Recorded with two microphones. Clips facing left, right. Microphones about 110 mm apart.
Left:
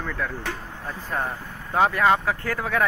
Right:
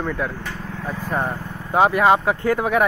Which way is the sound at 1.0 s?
15° right (ahead or behind).